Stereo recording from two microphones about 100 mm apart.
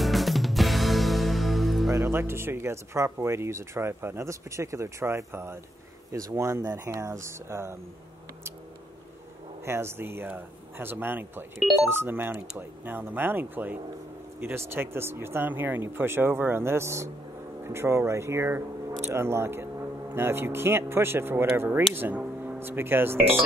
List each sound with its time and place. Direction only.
0.0 s music: centre (ahead or behind)
1.9 s speech: 30° right (ahead or behind)
9.7 s speech: 25° right (ahead or behind)
23.1 s speech: 10° left (ahead or behind)